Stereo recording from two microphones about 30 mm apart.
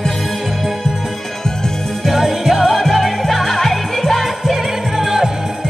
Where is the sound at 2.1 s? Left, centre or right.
Centre.